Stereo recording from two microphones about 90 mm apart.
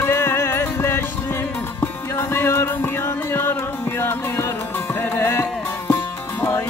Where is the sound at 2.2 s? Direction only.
30° left (ahead or behind).